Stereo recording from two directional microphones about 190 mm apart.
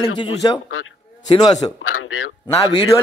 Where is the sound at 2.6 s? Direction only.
20° left (ahead or behind).